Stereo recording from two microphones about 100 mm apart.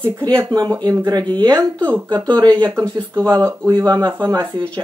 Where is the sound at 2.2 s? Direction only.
45° right (ahead or behind).